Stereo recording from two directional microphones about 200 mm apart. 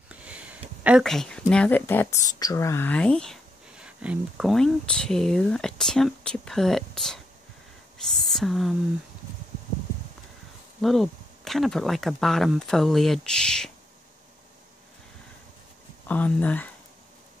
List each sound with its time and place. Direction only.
0.1 s a sound: 5° right (ahead or behind)
1.5 s speech: 5° left (ahead or behind)
10.8 s speech: centre (ahead or behind)
16.1 s speech: 5° left (ahead or behind)